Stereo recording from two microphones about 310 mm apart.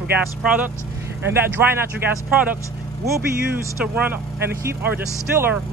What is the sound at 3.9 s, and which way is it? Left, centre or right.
Speech, centre.